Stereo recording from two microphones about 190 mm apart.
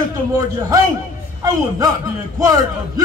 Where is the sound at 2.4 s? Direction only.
20° right (ahead or behind).